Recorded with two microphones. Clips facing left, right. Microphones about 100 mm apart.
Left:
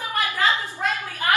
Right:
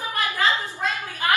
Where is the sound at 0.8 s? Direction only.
20° right (ahead or behind).